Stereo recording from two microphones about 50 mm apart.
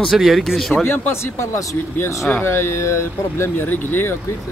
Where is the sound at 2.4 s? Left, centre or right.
Left.